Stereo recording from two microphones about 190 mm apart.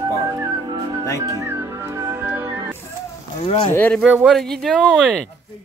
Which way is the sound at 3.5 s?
20° left (ahead or behind).